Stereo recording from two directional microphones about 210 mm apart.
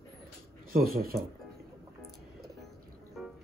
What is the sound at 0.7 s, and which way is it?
Speech, 45° right (ahead or behind).